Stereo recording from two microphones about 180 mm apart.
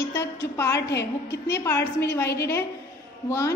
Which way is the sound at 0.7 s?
70° left (ahead or behind).